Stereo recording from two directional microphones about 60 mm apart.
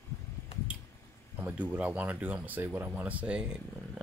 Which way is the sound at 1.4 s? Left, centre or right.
Right.